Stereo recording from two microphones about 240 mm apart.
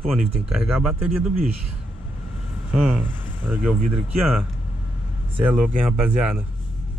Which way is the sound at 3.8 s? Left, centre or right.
Right.